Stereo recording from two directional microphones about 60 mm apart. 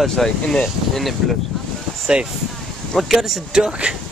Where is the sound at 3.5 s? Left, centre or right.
Centre.